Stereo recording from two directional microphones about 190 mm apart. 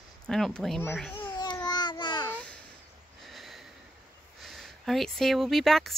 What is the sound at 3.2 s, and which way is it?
Snort, centre (ahead or behind).